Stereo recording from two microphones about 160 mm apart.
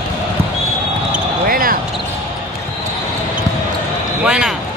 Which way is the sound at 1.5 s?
65° right (ahead or behind).